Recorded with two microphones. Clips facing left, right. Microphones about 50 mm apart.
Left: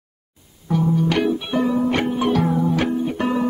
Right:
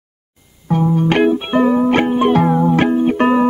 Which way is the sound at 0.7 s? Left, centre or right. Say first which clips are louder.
Right 4 dB; right.